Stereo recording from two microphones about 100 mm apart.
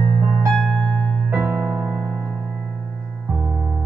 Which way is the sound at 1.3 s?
20° right (ahead or behind).